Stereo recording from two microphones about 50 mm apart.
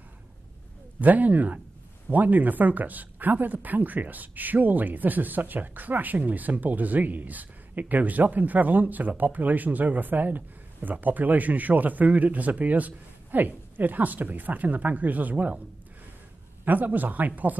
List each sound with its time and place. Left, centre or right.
1.0 s speech: right
16.6 s speech: right